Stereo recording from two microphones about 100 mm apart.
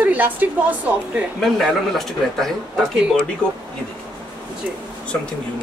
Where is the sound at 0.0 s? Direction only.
15° right (ahead or behind).